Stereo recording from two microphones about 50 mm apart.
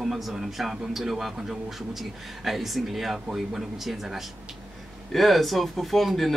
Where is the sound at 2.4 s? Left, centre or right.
Centre.